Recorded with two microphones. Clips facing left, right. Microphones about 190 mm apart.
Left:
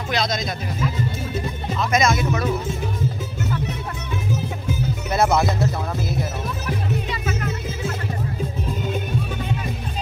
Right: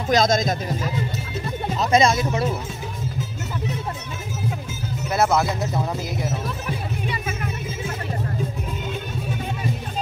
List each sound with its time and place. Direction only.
0.1 s speech: 45° right (ahead or behind); by 2.5 s 30° right (ahead or behind)
5.1 s music: centre (ahead or behind)
5.6 s music: 15° right (ahead or behind)